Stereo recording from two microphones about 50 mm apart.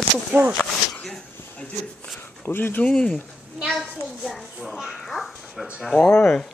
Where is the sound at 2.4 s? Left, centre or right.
Left.